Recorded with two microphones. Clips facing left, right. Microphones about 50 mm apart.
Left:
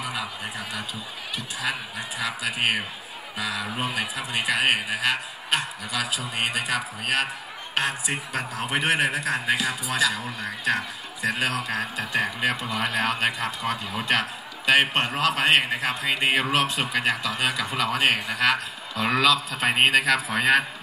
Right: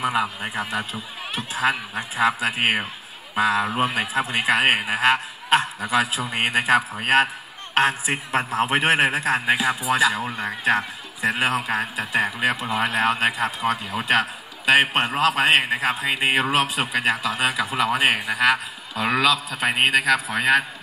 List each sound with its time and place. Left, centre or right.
0.0 s a man's voice: right
9.5 s a man's voice: right; by 20.6 s centre